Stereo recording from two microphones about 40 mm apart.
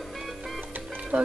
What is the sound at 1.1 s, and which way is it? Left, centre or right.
Speech, right.